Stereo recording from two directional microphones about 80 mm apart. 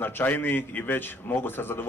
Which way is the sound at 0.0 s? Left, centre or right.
Left.